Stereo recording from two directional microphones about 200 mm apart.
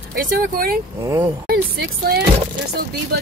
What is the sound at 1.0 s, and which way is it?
Speech, 15° right (ahead or behind).